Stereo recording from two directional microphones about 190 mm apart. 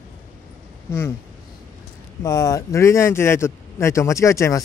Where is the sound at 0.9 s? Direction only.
15° left (ahead or behind).